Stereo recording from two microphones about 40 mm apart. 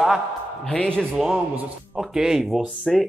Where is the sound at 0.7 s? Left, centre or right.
Left.